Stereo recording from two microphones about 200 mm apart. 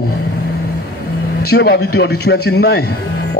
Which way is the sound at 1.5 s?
55° left (ahead or behind).